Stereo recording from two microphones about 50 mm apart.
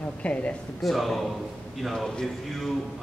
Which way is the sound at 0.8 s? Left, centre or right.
Centre.